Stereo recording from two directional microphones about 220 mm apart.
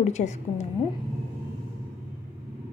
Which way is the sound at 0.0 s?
30° left (ahead or behind).